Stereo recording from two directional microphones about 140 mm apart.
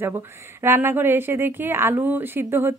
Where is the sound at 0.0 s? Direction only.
15° right (ahead or behind).